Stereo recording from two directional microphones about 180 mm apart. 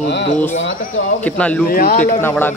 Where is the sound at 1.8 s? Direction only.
35° left (ahead or behind).